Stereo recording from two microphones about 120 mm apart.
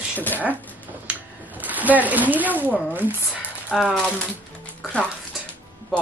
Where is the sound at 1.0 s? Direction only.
15° right (ahead or behind).